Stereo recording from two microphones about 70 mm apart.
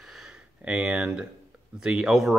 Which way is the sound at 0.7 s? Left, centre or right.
Centre.